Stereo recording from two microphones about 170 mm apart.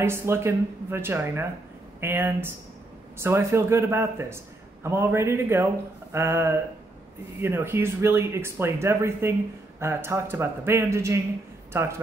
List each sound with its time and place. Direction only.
0.0 s a man's voice: 15° right (ahead or behind)